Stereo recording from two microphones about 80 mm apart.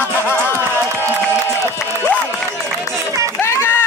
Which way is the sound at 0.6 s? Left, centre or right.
Right.